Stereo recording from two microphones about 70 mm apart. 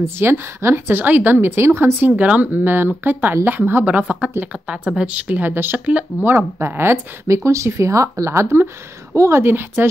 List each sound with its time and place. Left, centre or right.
0.0 s a woman's voice: right
7.3 s a woman's voice: right
9.4 s a woman's voice: right